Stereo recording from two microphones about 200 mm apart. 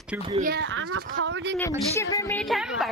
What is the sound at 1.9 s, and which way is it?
Speech, 15° left (ahead or behind).